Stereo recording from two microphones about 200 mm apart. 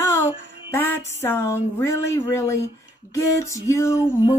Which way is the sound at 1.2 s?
10° left (ahead or behind).